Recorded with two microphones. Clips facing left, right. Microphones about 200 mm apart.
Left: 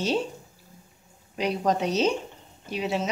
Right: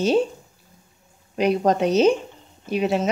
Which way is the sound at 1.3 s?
55° right (ahead or behind).